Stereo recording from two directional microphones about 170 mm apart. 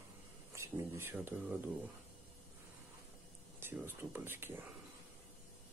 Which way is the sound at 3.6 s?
15° right (ahead or behind).